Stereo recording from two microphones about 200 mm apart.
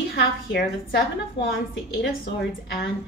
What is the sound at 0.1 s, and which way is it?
A woman's voice, 50° left (ahead or behind).